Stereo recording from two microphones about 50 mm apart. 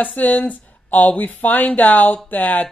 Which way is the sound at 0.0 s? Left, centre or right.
Left.